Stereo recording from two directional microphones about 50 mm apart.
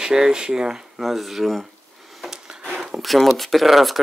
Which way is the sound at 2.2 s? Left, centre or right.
Centre.